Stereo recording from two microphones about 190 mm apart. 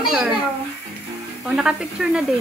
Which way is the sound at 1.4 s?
Centre (ahead or behind).